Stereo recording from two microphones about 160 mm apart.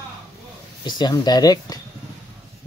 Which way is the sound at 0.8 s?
25° left (ahead or behind).